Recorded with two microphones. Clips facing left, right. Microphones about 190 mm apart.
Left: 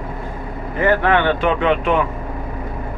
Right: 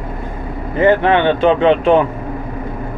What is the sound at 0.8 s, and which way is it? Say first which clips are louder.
Speech: right 4 dB; 20° right (ahead or behind).